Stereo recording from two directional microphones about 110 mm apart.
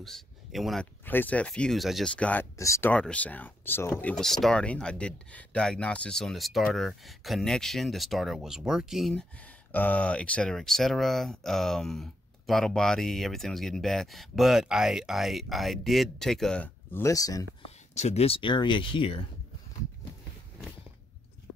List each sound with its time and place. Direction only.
0.0 s speech: centre (ahead or behind)
1.0 s speech: 15° left (ahead or behind); by 2.1 s centre (ahead or behind)
2.1 s speech: 10° left (ahead or behind)
2.5 s speech: 30° left (ahead or behind)
2.9 s speech: 10° left (ahead or behind)
4.1 s speech: 5° left (ahead or behind)
9.7 s speech: 15° left (ahead or behind)
17.0 s speech: 30° left (ahead or behind)
17.9 s speech: 80° left; by 19.2 s 50° left (ahead or behind)